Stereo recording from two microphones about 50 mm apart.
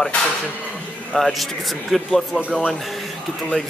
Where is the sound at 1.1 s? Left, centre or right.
Centre.